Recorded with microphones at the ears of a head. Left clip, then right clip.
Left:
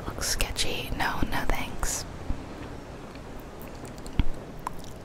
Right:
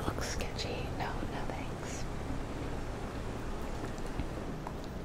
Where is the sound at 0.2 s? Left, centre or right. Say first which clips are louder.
Left 8 dB; left.